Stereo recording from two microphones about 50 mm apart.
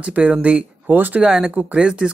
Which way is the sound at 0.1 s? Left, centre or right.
Right.